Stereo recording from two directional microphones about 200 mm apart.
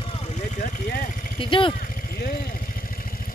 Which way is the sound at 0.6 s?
40° left (ahead or behind).